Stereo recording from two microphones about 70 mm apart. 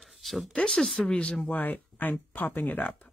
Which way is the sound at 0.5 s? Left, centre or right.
Centre.